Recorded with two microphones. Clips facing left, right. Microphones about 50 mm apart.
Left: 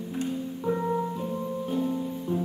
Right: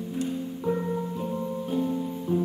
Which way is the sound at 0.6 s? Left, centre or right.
Centre.